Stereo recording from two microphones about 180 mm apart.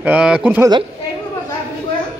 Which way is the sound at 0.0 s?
5° right (ahead or behind).